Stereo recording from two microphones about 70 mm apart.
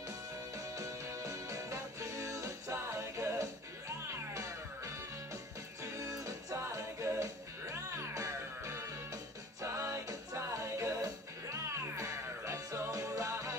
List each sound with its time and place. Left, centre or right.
0.6 s music: right